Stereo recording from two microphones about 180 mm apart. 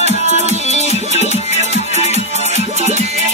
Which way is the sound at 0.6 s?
40° left (ahead or behind).